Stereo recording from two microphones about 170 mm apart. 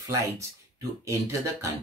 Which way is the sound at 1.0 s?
20° right (ahead or behind).